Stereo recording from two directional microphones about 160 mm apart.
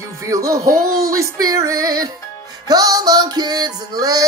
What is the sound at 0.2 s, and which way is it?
Music, 20° right (ahead or behind).